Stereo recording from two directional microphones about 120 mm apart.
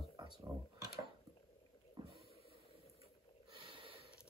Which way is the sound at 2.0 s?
40° right (ahead or behind).